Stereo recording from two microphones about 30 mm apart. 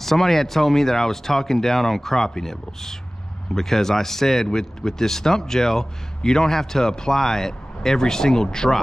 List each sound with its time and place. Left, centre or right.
0.0 s speech: centre